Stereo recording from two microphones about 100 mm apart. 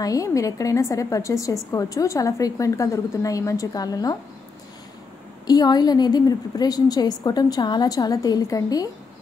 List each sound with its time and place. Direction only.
0.0 s a woman's voice: 35° left (ahead or behind)
5.5 s a woman's voice: 45° left (ahead or behind)